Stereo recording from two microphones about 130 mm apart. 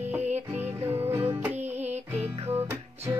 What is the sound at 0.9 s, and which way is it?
Music, 20° right (ahead or behind).